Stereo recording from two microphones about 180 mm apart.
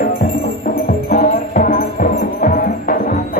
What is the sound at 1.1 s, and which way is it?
Music, 55° left (ahead or behind).